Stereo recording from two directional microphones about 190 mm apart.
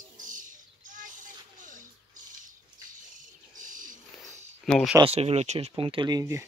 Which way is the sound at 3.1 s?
40° right (ahead or behind).